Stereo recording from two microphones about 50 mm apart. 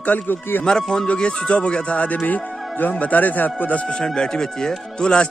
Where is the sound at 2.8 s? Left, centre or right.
Left.